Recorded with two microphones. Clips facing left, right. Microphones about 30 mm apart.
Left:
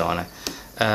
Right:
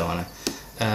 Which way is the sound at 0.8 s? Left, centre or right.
Left.